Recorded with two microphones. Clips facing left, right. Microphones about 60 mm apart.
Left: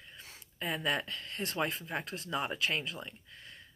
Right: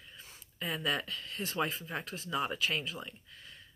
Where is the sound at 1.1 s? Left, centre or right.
Left.